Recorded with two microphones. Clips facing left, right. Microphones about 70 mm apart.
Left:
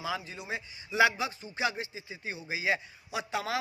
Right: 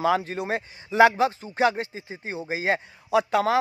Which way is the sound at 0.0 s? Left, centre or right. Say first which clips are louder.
Right 13 dB; right.